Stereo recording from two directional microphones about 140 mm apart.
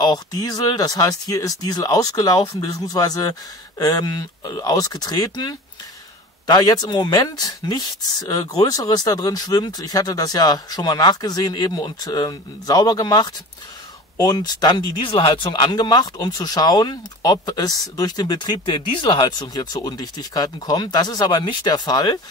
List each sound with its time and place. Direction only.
0.0 s speech: 30° left (ahead or behind)